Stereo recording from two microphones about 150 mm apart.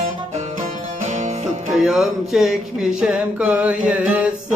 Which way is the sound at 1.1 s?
50° right (ahead or behind).